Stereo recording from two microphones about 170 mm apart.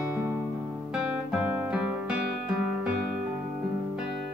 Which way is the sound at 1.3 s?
5° right (ahead or behind).